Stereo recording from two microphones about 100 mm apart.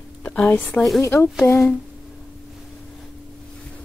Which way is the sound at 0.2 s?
20° left (ahead or behind).